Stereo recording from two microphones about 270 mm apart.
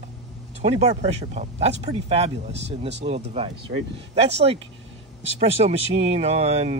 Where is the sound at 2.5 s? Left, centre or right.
Right.